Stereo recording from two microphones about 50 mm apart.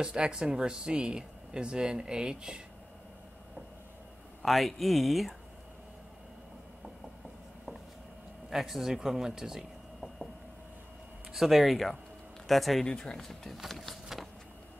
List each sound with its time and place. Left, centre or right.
0.0 s speech: centre
4.4 s speech: centre
8.5 s speech: centre
11.3 s speech: centre
12.8 s speech: centre